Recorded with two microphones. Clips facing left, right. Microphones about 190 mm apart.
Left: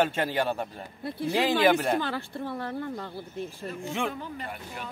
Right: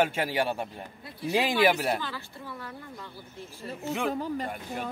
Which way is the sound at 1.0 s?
60° left (ahead or behind).